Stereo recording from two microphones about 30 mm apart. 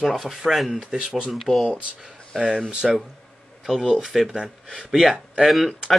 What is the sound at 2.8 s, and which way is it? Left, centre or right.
Speech, centre.